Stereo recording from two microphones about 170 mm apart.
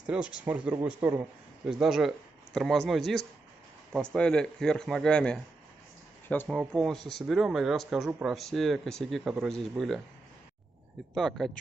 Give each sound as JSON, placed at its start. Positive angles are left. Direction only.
{"t": 0.0, "sound": "a man's voice", "side_deg": -5}
{"t": 3.9, "sound": "speech", "side_deg": 5}
{"t": 11.1, "sound": "speech", "side_deg": 0}